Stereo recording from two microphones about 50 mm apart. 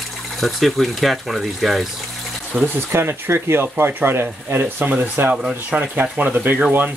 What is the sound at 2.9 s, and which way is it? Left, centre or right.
Speech, right.